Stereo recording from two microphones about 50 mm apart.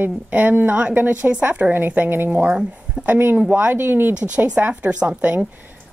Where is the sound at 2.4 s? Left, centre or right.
Right.